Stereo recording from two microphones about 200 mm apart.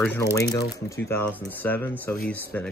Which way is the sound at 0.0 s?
15° left (ahead or behind).